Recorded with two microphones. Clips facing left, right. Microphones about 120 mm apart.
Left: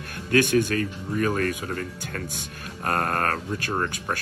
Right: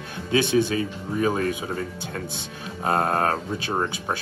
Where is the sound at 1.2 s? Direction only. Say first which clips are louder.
Right 2 dB; 15° right (ahead or behind).